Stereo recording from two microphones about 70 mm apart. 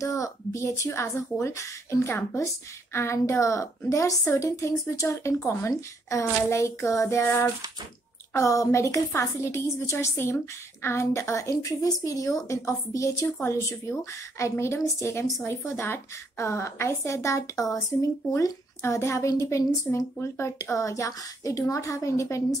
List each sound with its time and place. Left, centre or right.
0.0 s speech: left
7.2 s speech: left
8.3 s speech: left
11.5 s speech: left